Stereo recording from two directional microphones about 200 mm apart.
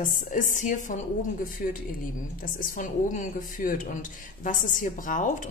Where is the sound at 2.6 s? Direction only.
40° left (ahead or behind).